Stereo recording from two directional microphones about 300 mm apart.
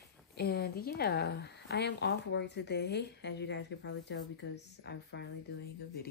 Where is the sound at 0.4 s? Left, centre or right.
Left.